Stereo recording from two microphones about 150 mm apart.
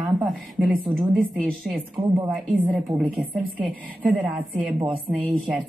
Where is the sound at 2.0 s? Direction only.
35° right (ahead or behind).